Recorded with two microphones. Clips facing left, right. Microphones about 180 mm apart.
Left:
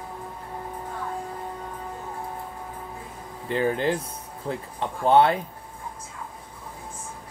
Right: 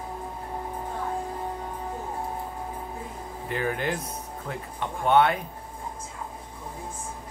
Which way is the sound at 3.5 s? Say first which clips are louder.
Left 5 dB; 30° left (ahead or behind).